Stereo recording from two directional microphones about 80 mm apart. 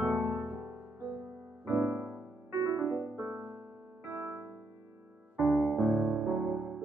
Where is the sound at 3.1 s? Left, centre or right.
Right.